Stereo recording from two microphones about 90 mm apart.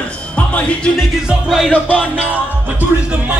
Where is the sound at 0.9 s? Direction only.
5° right (ahead or behind).